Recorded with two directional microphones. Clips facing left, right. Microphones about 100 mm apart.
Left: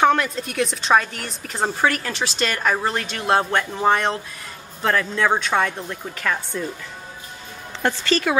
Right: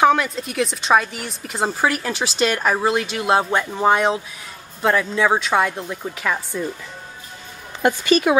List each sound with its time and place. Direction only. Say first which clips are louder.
0.0 s speech: right 2 dB; centre (ahead or behind)
7.8 s speech: right 4 dB; 15° right (ahead or behind)